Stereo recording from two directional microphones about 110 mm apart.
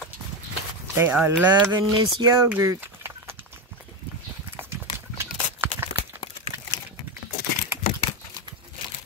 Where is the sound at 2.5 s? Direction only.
20° right (ahead or behind).